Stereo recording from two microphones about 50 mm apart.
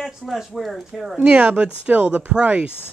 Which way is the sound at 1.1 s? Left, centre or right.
Right.